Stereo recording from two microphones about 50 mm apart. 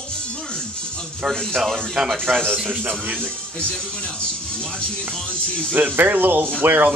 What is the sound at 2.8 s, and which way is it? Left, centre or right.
Speech, right.